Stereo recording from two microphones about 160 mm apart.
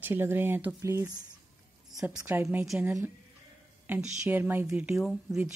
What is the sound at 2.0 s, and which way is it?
A woman's voice, 5° right (ahead or behind).